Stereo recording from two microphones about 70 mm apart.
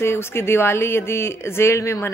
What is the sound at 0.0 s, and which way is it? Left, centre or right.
Speech, left.